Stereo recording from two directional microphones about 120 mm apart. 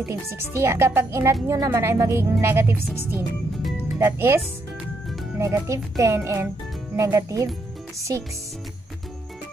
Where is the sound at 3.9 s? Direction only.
20° right (ahead or behind).